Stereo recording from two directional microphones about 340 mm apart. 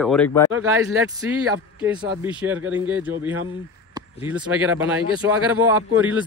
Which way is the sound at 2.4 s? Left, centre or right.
Centre.